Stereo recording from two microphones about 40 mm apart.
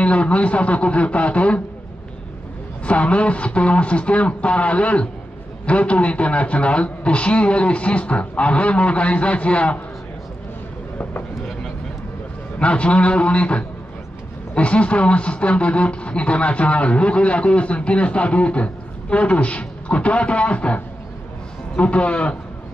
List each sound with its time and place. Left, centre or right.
0.0 s speech: left
2.8 s speech: left
12.5 s a man's voice: left